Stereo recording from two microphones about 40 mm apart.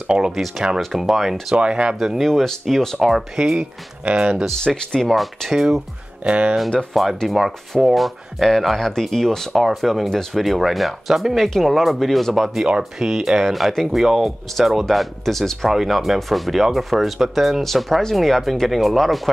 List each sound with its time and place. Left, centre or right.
0.0 s speech: right
0.3 s speech: centre
1.5 s speech: right
2.0 s speech: centre
2.2 s speech: centre
3.0 s speech: centre
3.3 s speech: centre
4.6 s speech: centre
5.0 s speech: centre
6.2 s speech: right
6.9 s speech: centre
13.0 s speech: centre